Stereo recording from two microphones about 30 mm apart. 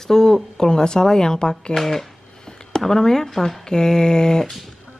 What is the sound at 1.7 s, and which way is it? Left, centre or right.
Speech, centre.